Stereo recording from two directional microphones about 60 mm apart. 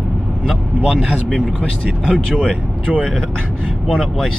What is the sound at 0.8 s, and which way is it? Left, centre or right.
Speech, centre.